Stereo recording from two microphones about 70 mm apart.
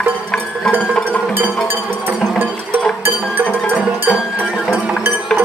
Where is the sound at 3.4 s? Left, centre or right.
Centre.